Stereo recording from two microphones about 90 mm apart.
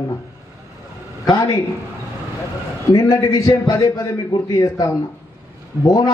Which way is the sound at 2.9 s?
35° left (ahead or behind).